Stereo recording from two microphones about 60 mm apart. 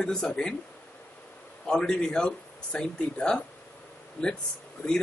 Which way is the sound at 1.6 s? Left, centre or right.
Centre.